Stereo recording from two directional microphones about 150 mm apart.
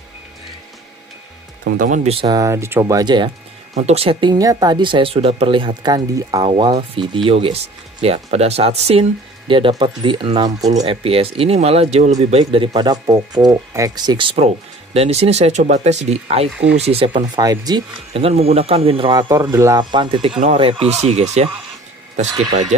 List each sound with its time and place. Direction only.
2.2 s speech: 20° right (ahead or behind)
3.7 s speech: 45° right (ahead or behind); by 6.5 s 25° right (ahead or behind)
7.2 s speech: 40° right (ahead or behind)
10.9 s speech: 40° right (ahead or behind)
12.7 s speech: 30° right (ahead or behind)
17.4 s speech: 25° right (ahead or behind)
18.1 s speech: 40° right (ahead or behind)
22.5 s speech: 50° right (ahead or behind)